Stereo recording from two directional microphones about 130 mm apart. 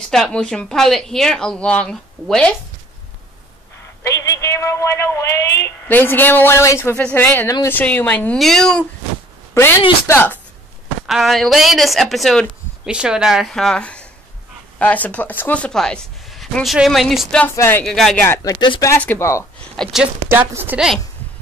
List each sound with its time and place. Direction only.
0.1 s a woman's voice: 5° left (ahead or behind)
4.1 s a woman's voice: 20° left (ahead or behind)
7.0 s a woman's voice: 10° left (ahead or behind)
9.5 s a woman's voice: 20° left (ahead or behind)
11.1 s a woman's voice: centre (ahead or behind)
17.6 s speech: 15° left (ahead or behind)
17.8 s a woman's voice: 5° left (ahead or behind)
18.2 s a woman's voice: 25° left (ahead or behind)
18.9 s a woman's voice: 15° left (ahead or behind)
19.8 s a woman's voice: 5° right (ahead or behind)
20.2 s speech: 15° right (ahead or behind)